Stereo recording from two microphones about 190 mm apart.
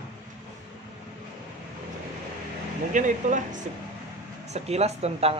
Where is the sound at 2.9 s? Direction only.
40° right (ahead or behind).